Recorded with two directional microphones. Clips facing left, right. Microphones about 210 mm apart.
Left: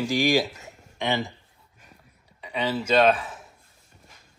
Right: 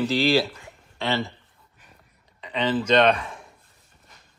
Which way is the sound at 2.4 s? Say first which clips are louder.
Right 3 dB; 10° left (ahead or behind).